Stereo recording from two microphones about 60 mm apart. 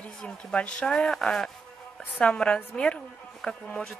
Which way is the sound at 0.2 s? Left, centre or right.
Centre.